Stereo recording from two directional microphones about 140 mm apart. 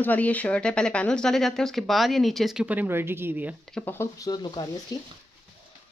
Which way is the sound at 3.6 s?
5° left (ahead or behind).